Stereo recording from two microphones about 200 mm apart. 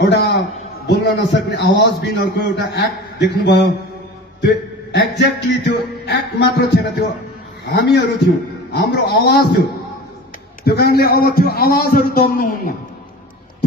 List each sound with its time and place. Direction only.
0.0 s a man's voice: 60° left (ahead or behind)